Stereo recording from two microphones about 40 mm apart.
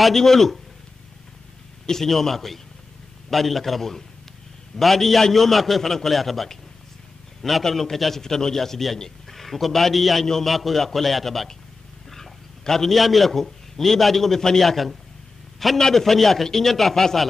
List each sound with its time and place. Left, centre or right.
0.0 s a man's voice: centre
1.9 s a man's voice: centre